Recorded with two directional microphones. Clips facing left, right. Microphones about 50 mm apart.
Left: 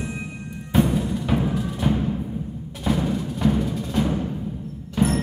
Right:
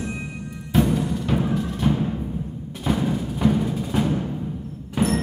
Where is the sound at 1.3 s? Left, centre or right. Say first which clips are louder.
Even; centre.